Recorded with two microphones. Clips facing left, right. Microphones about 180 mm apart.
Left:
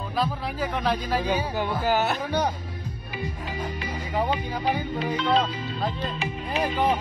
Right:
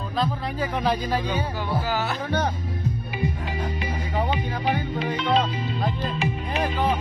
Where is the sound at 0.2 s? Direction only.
Centre (ahead or behind).